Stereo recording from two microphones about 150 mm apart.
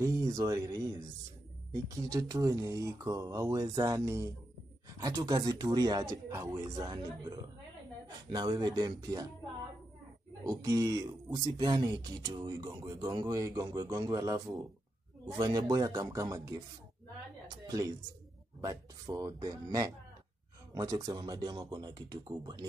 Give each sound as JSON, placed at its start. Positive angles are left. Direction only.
{"t": 0.0, "sound": "speech", "side_deg": -20}
{"t": 10.4, "sound": "speech", "side_deg": -25}
{"t": 20.7, "sound": "speech", "side_deg": -25}